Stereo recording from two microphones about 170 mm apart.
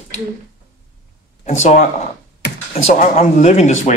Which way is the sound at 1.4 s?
45° left (ahead or behind).